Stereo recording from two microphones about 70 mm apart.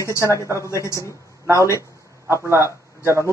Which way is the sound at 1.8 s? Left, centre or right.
Right.